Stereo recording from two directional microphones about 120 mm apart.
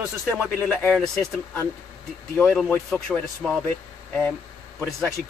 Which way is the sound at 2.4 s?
15° left (ahead or behind).